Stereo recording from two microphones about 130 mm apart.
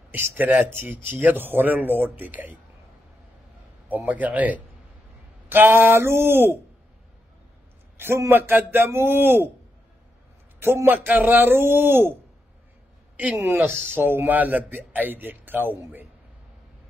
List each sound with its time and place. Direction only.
0.1 s a man's voice: 15° right (ahead or behind)
3.9 s a man's voice: 10° right (ahead or behind)
8.0 s a man's voice: 15° right (ahead or behind)
10.6 s a man's voice: 15° right (ahead or behind)
13.2 s a man's voice: 15° right (ahead or behind)